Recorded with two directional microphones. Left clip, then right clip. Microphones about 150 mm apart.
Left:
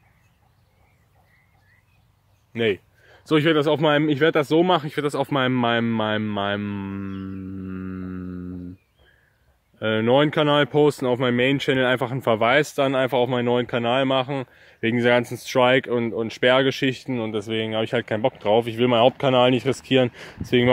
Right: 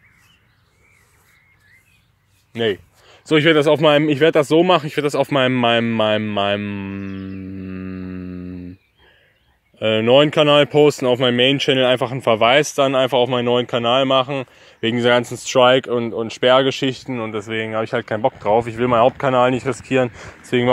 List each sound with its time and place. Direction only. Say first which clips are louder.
2.5 s a sound: right 2 dB; centre (ahead or behind)
3.5 s speech: right 6 dB; 30° right (ahead or behind); by 8.5 s 10° right (ahead or behind)
9.8 s speech: right 6 dB; 15° right (ahead or behind); by 17.1 s 5° left (ahead or behind)
17.1 s speech: right 2 dB; 20° left (ahead or behind)